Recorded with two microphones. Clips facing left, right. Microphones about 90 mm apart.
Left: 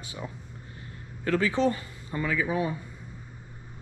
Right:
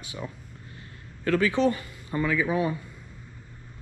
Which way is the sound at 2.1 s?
40° right (ahead or behind).